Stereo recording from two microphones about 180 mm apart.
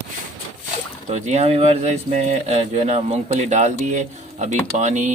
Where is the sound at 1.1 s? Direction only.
40° right (ahead or behind).